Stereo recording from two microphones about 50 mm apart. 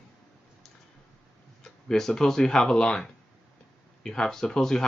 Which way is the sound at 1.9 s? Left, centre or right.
Centre.